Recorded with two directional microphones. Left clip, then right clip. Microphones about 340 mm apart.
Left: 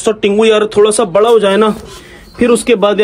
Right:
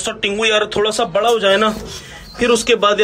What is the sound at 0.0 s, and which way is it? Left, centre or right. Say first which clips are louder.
Speech: left 8 dB; centre.